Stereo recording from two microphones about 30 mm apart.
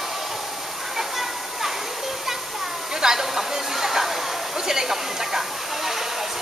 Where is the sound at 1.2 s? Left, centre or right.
Centre.